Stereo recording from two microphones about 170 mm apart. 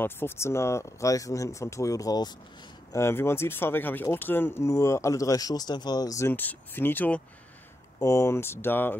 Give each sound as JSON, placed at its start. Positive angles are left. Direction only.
{"t": 0.0, "sound": "speech", "side_deg": 15}